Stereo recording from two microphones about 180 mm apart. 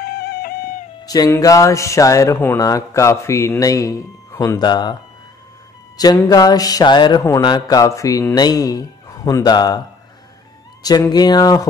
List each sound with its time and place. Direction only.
0.0 s music: 60° left (ahead or behind)
1.0 s speech: 20° left (ahead or behind)
5.9 s speech: 20° left (ahead or behind)
10.8 s speech: 20° left (ahead or behind)